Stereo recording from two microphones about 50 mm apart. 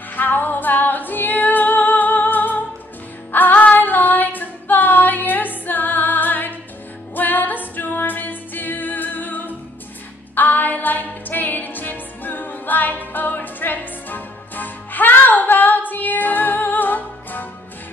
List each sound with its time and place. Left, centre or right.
0.1 s music: left